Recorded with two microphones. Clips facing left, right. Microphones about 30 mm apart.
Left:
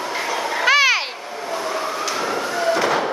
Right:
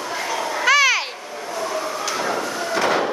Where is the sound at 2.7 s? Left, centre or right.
Centre.